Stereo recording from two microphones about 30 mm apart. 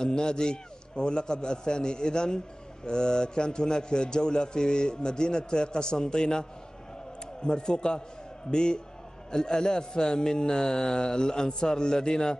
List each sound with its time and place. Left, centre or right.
0.0 s a man's voice: left
7.4 s a man's voice: left